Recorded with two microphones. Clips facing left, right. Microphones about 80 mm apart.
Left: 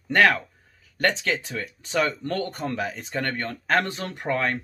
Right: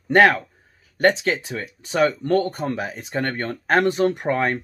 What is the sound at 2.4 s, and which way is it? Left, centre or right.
Speech, right.